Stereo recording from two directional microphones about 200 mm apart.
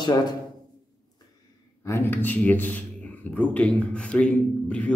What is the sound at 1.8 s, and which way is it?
A man's voice, 15° left (ahead or behind).